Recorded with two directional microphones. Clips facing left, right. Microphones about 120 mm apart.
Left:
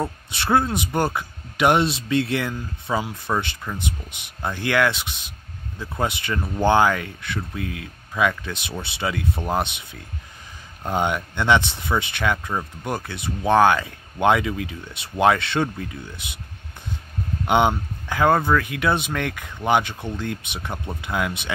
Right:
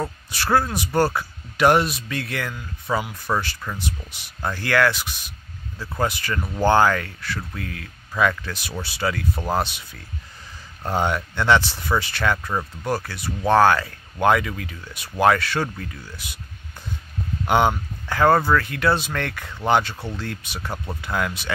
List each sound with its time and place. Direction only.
0.3 s speech: 25° left (ahead or behind)
8.4 s speech: 20° left (ahead or behind)
17.5 s speech: 20° left (ahead or behind)